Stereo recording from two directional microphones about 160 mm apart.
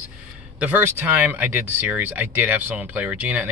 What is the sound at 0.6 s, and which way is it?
Speech, 10° right (ahead or behind).